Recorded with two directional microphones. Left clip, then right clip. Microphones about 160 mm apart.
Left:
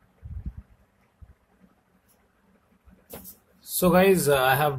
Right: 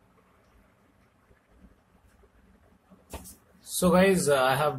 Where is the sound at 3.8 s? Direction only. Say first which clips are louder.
Left 3 dB; 25° left (ahead or behind).